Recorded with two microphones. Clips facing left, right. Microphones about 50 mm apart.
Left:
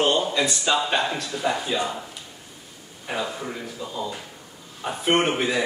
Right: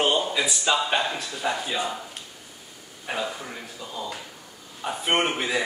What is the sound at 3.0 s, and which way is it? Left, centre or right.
Speech, centre.